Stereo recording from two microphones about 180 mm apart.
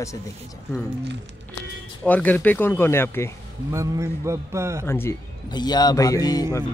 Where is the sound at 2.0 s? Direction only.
10° left (ahead or behind).